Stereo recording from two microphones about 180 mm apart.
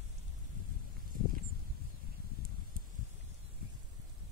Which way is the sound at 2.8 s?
50° right (ahead or behind).